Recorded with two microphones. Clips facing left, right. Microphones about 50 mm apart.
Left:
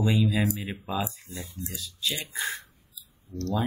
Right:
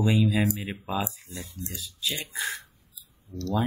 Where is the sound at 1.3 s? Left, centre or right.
Left.